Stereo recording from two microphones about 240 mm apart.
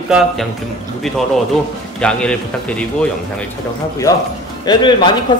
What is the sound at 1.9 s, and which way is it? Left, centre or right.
Speech, centre.